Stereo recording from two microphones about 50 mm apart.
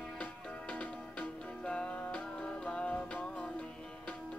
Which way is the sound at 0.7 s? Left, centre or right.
Left.